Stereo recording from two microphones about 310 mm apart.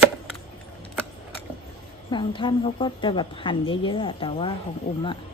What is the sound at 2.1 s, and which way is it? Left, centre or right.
Speech, centre.